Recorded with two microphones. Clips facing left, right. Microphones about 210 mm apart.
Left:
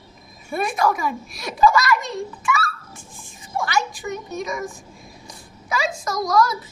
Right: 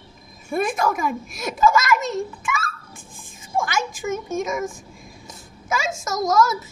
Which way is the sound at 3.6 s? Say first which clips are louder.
Left 1 dB; 50° right (ahead or behind).